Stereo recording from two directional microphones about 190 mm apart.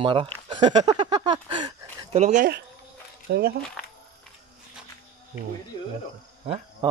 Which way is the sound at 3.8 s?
5° left (ahead or behind).